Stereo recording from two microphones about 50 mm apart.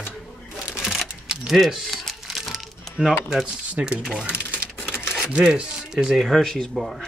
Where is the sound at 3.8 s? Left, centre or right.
Right.